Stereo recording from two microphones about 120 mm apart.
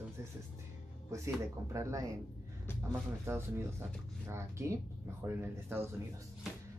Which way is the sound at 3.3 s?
20° right (ahead or behind).